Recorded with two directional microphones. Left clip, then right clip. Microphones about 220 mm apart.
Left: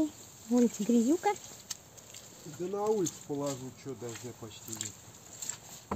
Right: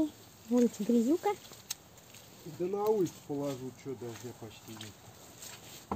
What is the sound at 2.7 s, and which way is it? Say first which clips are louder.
Speech: even; 45° left (ahead or behind).